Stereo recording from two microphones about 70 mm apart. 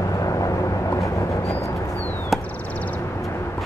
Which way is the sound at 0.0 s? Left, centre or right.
Left.